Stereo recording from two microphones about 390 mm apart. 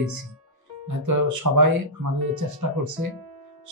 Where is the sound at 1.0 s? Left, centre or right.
Right.